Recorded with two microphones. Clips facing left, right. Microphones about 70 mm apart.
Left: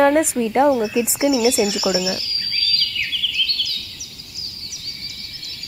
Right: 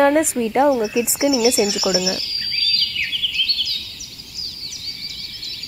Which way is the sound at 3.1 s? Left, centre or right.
Left.